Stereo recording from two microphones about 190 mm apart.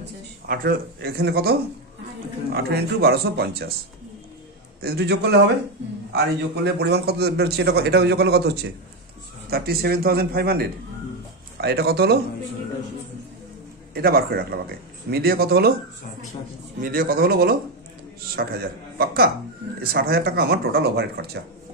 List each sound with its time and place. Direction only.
0.5 s a man's voice: 50° right (ahead or behind)
4.8 s a man's voice: 55° right (ahead or behind)
13.9 s a man's voice: 55° right (ahead or behind)
16.8 s a man's voice: 50° right (ahead or behind)